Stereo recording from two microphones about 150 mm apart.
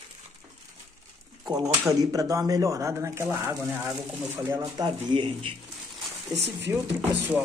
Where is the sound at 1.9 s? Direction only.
25° right (ahead or behind).